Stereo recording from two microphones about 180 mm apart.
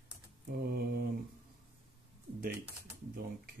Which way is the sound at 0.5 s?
60° right (ahead or behind).